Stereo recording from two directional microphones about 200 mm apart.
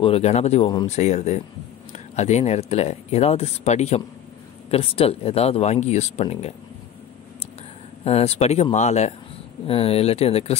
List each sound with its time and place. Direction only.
0.0 s speech: 30° left (ahead or behind)
8.0 s speech: 30° left (ahead or behind)